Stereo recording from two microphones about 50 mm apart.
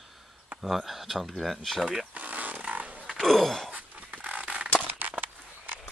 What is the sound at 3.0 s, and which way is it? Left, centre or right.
Grunt, centre.